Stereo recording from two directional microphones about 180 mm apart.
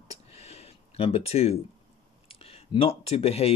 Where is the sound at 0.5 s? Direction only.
35° left (ahead or behind).